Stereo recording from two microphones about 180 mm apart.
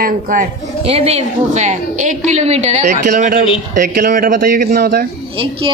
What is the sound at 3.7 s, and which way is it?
Speech, 55° right (ahead or behind).